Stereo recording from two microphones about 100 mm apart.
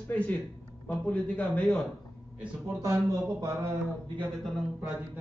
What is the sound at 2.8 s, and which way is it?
Speech, 35° right (ahead or behind).